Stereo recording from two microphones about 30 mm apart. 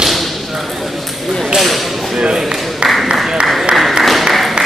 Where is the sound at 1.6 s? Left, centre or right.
Centre.